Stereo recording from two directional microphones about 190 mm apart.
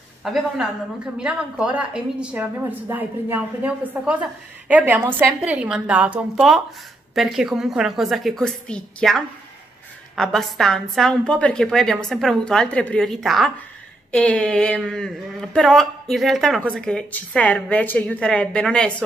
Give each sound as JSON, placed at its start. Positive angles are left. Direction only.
{"t": 0.2, "sound": "a woman's voice", "side_deg": 0}